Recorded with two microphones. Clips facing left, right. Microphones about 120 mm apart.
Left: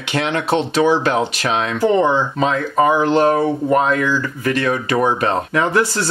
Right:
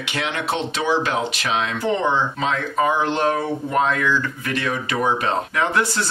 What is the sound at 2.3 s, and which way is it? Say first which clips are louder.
Speech: left 5 dB; 45° left (ahead or behind).